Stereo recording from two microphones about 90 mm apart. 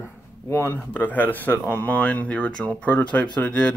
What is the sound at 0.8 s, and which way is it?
Speech, 15° left (ahead or behind).